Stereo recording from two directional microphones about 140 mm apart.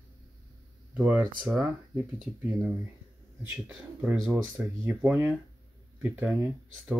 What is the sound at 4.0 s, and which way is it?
Speech, 10° right (ahead or behind).